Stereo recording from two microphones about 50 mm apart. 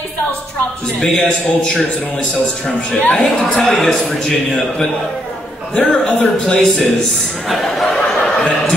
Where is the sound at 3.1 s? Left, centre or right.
Centre.